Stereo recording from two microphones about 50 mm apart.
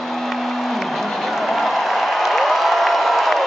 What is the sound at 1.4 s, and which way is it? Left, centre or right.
Applause, centre.